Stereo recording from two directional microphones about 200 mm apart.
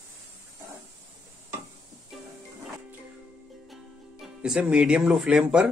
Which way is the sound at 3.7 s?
Centre (ahead or behind).